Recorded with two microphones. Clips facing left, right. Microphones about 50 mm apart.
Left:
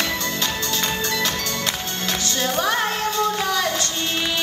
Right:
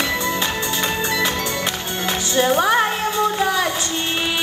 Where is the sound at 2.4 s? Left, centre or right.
Right.